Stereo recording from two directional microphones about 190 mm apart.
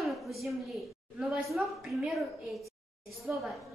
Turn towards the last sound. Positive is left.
turn(degrees=0)  # may be behind; listen again after turning